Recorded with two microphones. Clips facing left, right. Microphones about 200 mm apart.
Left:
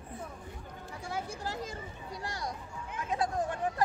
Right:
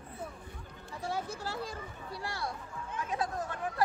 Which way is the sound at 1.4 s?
20° left (ahead or behind).